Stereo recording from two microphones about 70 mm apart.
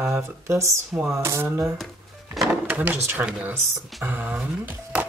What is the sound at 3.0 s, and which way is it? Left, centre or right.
Speech, right.